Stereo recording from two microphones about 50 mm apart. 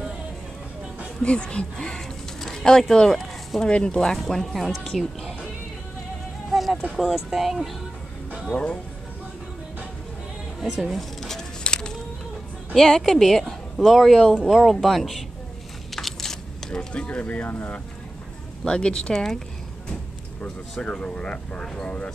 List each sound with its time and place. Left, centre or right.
1.2 s speech: left; by 5.5 s centre
6.5 s a sound: centre
7.0 s speech: centre
8.5 s speech: centre
10.6 s speech: centre
11.6 s a sound: centre
12.7 s speech: centre
15.9 s a sound: centre
16.9 s speech: left
18.6 s speech: centre
20.8 s speech: left